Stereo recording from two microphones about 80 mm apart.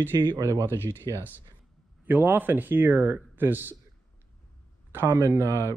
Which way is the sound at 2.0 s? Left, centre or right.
Right.